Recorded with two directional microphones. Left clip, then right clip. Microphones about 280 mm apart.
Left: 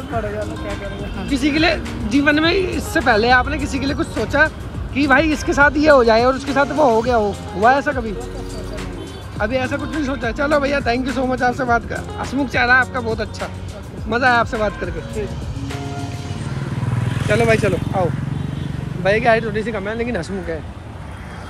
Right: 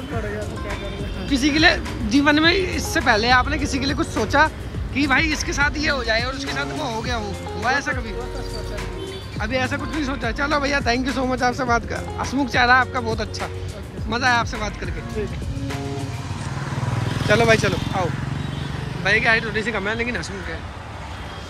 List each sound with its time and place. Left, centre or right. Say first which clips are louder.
1.3 s speech: even; centre
9.4 s speech: left 4 dB; centre
17.0 s vehicle: left 1 dB; right
17.3 s speech: left 1 dB; centre
19.0 s speech: left 3 dB; centre